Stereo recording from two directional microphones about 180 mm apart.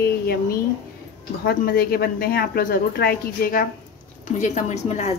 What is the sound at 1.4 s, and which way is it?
Speech, 60° left (ahead or behind).